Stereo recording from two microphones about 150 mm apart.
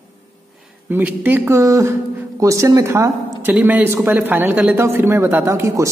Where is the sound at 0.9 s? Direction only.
15° right (ahead or behind).